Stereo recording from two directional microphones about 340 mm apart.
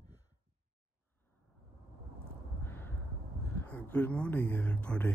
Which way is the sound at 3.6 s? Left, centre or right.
Centre.